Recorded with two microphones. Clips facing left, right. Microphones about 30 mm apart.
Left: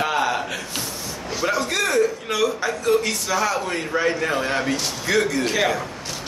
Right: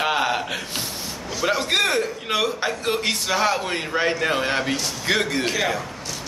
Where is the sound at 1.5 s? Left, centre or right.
Right.